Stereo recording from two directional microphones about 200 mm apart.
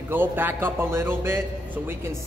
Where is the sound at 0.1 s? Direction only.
10° right (ahead or behind).